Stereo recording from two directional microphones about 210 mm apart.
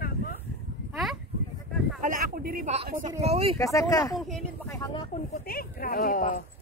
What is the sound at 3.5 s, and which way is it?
Speech, 15° left (ahead or behind).